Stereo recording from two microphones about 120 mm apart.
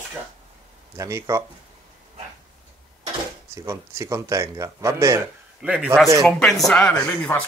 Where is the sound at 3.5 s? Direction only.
25° right (ahead or behind).